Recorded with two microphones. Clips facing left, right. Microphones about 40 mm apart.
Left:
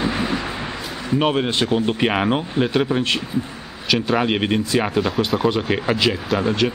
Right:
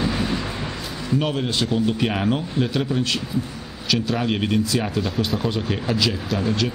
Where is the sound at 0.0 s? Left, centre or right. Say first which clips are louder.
Left 2 dB; left.